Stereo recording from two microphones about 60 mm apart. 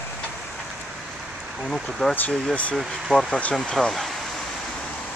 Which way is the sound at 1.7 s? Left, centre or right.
Centre.